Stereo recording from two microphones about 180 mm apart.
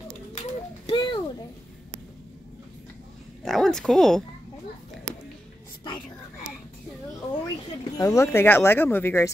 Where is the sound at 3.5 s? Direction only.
Centre (ahead or behind).